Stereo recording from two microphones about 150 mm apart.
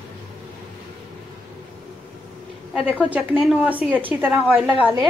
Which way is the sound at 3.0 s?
5° right (ahead or behind).